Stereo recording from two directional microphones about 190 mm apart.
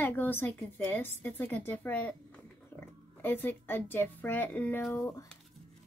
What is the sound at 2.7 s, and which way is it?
Oink, 10° left (ahead or behind).